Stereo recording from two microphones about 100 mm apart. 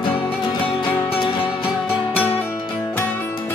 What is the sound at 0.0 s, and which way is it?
Music, 55° left (ahead or behind).